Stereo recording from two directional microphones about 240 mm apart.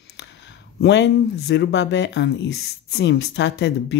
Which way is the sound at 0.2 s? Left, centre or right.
Left.